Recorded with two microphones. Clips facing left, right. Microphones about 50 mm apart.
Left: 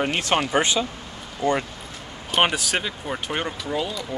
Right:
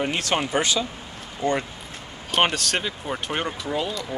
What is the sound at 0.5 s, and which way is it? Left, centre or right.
Speech, left.